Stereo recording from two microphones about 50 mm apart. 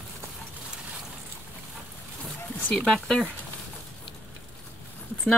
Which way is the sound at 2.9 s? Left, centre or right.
Centre.